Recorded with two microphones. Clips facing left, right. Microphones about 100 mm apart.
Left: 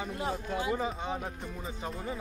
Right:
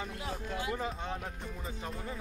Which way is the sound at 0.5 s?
15° left (ahead or behind).